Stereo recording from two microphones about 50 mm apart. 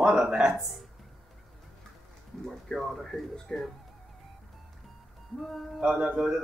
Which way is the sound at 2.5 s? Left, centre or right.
Centre.